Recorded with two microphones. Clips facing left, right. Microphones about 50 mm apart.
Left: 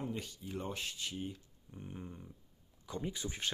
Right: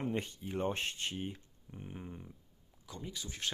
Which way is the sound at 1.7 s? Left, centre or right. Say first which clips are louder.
Right 1 dB; centre.